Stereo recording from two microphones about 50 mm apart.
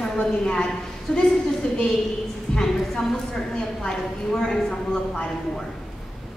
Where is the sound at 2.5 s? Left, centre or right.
Centre.